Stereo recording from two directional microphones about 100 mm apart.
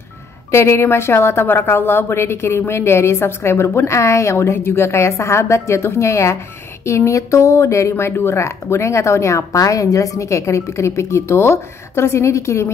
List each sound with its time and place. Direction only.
0.5 s a woman's voice: 25° left (ahead or behind)